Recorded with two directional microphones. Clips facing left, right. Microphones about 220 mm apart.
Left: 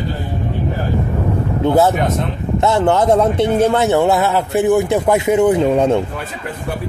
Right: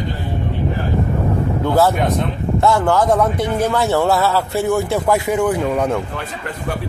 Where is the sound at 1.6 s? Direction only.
20° left (ahead or behind).